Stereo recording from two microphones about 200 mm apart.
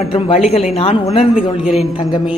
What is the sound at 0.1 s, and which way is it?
A man's voice, 30° left (ahead or behind).